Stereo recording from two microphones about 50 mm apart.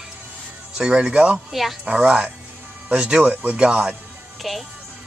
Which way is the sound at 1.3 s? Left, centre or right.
Centre.